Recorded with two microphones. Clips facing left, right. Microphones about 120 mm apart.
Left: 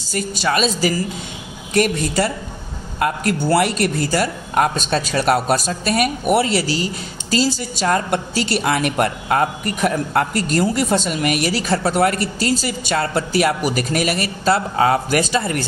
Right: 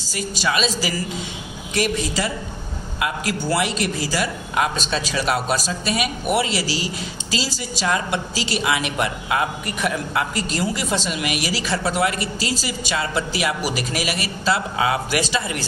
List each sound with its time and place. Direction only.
0.1 s a man's voice: 50° left (ahead or behind)